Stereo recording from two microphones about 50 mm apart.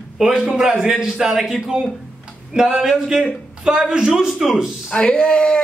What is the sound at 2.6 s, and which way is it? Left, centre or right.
A man's voice, centre.